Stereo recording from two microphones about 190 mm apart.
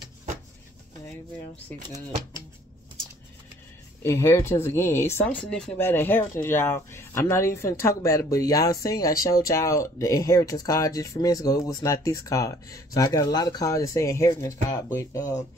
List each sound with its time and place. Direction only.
1.7 s speech: 15° left (ahead or behind)
4.0 s speech: 15° left (ahead or behind)